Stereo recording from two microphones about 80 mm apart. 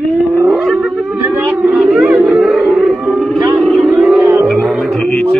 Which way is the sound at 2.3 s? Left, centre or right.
Centre.